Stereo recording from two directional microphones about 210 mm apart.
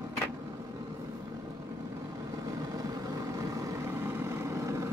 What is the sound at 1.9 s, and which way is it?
Vehicle, 15° right (ahead or behind).